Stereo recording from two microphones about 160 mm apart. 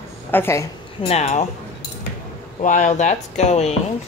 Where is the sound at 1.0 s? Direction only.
40° left (ahead or behind).